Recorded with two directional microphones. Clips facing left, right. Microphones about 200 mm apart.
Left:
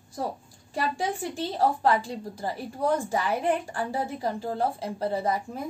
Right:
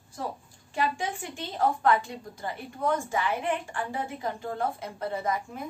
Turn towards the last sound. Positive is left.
turn(degrees=35)  # may be behind; listen again after turning